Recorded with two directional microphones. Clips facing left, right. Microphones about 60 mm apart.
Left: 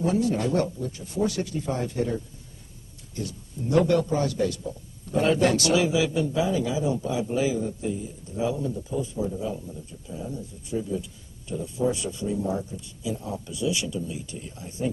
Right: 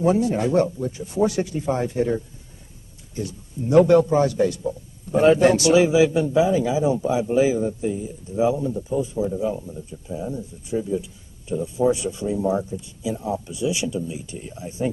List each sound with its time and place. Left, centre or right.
0.0 s speech: right